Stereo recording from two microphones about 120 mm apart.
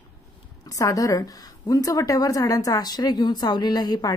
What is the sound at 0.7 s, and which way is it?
A woman's voice, 30° left (ahead or behind).